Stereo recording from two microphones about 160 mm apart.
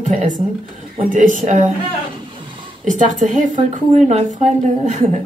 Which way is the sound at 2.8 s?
50° right (ahead or behind).